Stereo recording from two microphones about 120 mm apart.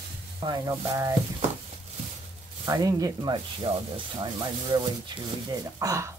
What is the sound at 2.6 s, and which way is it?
Speech, 30° right (ahead or behind).